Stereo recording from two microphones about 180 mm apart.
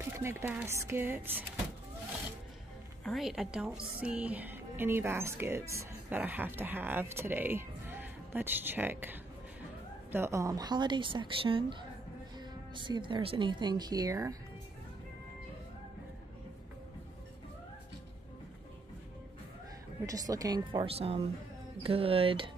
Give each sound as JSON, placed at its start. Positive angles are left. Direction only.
{"t": 0.0, "sound": "a woman's voice", "side_deg": -15}
{"t": 3.0, "sound": "a woman's voice", "side_deg": 0}
{"t": 20.1, "sound": "speech", "side_deg": -20}